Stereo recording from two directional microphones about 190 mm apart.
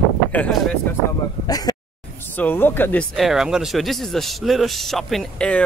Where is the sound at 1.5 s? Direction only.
20° left (ahead or behind).